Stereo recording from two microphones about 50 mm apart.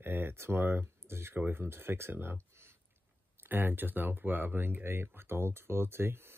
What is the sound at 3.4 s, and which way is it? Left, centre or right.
Speech, right.